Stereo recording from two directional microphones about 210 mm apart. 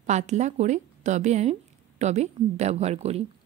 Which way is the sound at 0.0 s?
35° right (ahead or behind).